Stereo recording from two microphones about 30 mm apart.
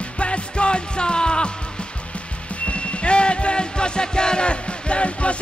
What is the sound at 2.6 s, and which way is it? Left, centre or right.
Music, left.